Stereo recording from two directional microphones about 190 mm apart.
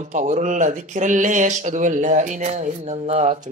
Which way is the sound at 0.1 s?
40° right (ahead or behind).